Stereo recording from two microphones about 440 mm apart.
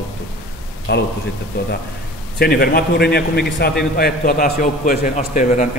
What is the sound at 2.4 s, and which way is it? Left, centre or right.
A man's voice, left.